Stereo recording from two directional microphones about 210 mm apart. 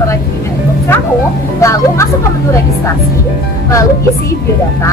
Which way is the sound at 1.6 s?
15° left (ahead or behind).